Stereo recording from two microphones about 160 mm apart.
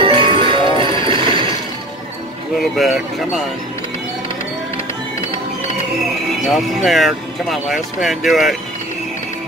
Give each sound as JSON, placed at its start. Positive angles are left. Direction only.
{"t": 0.0, "sound": "music", "side_deg": -30}
{"t": 0.9, "sound": "train", "side_deg": -30}
{"t": 2.5, "sound": "speech", "side_deg": 0}
{"t": 6.4, "sound": "speech", "side_deg": 0}